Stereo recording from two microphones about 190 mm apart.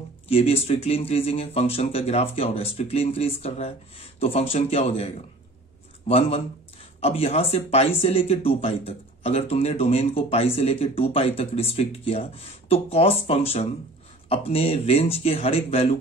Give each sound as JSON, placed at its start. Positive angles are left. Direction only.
{"t": 0.3, "sound": "speech", "side_deg": 30}